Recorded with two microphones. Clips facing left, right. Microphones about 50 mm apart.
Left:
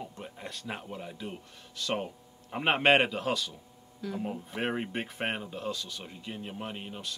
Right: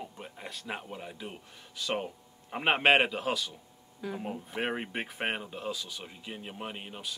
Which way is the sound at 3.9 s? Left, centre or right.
Centre.